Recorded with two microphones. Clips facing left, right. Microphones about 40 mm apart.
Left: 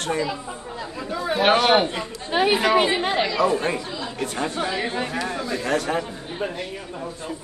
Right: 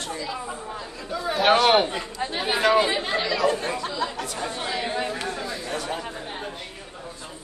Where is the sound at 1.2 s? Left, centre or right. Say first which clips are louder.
Left 1 dB; centre.